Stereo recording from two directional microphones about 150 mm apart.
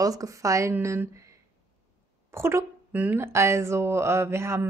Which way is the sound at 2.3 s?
15° right (ahead or behind).